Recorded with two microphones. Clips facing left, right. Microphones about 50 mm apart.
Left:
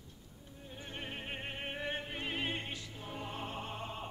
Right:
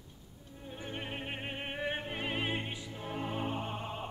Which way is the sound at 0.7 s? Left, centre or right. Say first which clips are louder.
Right 4 dB; centre.